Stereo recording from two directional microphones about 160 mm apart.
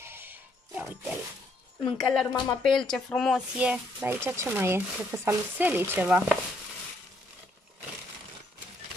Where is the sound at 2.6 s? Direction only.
5° left (ahead or behind).